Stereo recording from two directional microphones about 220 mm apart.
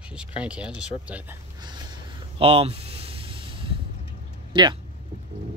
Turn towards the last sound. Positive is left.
turn(degrees=-20)  # may be behind; listen again after turning